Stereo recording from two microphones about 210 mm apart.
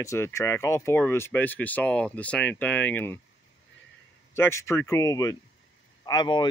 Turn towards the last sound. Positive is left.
turn(degrees=20)  # may be behind; listen again after turning